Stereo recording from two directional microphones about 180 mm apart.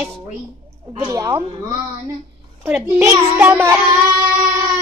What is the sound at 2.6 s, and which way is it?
A child's voice, 10° right (ahead or behind).